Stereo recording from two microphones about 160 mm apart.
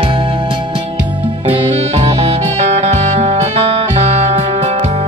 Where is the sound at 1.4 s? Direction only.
35° right (ahead or behind).